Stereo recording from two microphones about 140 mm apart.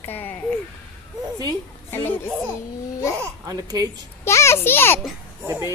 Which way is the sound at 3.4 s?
25° right (ahead or behind).